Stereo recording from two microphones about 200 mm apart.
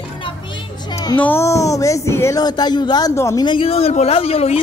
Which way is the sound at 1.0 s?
10° left (ahead or behind).